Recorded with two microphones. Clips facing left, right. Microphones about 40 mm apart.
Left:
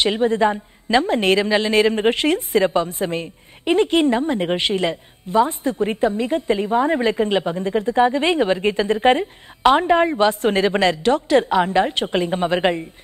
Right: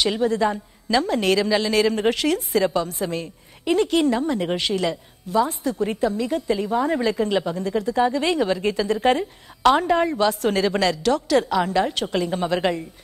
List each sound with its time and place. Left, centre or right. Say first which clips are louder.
0.0 s a woman's voice: left 3 dB; left